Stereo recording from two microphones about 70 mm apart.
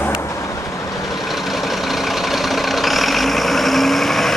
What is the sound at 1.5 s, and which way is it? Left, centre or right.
Vehicle, centre.